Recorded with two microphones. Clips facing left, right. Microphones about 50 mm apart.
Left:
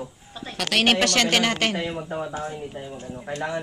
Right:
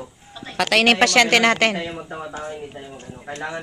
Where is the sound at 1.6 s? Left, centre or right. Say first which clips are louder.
Right 4 dB; right.